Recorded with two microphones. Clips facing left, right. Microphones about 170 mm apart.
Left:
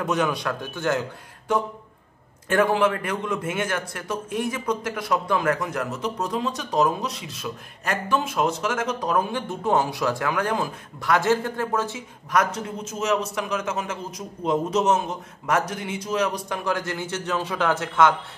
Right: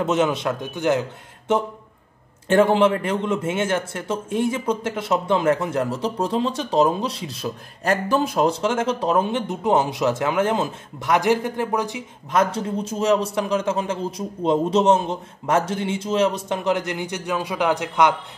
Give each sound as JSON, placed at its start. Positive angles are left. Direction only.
{"t": 0.0, "sound": "a man's voice", "side_deg": -25}
{"t": 12.4, "sound": "a man's voice", "side_deg": -30}